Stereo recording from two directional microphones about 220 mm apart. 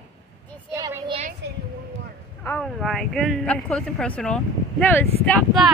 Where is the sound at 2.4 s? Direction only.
5° left (ahead or behind).